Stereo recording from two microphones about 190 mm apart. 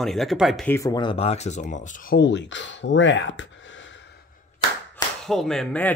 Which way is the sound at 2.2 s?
70° left (ahead or behind).